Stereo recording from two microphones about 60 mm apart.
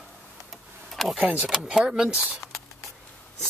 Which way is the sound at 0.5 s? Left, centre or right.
Centre.